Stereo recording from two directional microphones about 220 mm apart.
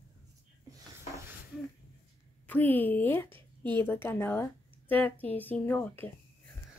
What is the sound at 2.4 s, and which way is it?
Speech, 10° left (ahead or behind).